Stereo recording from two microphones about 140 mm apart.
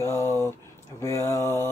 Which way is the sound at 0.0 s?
20° left (ahead or behind).